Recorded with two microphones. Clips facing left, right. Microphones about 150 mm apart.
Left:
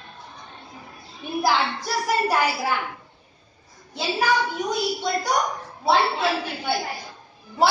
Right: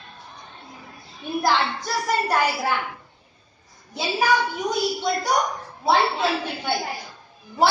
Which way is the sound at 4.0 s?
Centre (ahead or behind).